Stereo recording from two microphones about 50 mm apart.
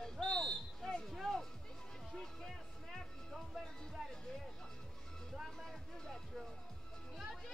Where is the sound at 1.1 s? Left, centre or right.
Centre.